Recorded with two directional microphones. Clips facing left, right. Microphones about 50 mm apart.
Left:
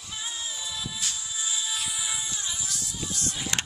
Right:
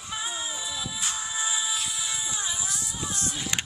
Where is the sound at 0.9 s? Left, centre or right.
Right.